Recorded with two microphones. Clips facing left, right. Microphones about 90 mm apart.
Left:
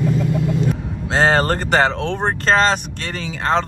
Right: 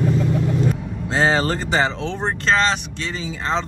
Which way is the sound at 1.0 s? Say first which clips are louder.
Left 3 dB; 65° left (ahead or behind).